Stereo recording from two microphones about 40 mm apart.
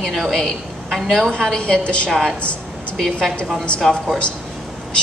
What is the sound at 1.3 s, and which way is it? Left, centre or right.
Speech, centre.